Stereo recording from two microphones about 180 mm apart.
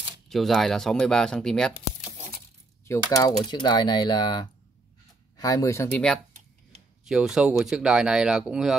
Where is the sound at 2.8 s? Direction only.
15° left (ahead or behind).